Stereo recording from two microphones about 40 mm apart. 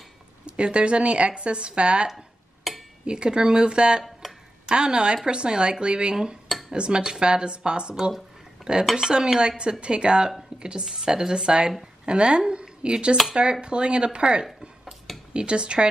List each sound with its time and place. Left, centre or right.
0.5 s speech: right
2.0 s dishes: centre
3.1 s speech: right
8.9 s speech: centre